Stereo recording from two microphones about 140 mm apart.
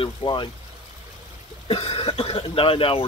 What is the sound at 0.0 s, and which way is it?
Speech, 35° left (ahead or behind).